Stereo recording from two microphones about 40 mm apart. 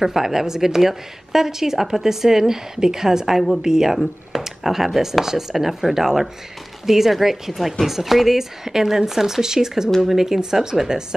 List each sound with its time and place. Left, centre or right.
0.0 s speech: centre